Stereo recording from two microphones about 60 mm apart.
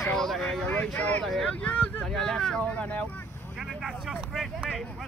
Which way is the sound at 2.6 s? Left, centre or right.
Left.